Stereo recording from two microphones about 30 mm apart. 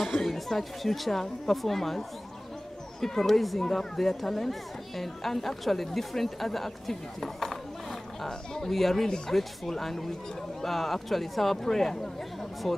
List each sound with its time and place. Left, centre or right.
0.6 s speech: centre
8.3 s speech: centre